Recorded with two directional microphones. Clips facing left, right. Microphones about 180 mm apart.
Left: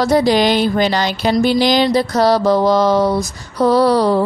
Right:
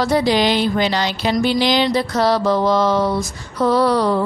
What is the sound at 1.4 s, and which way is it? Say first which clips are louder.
Mantra: left 3 dB; 45° left (ahead or behind).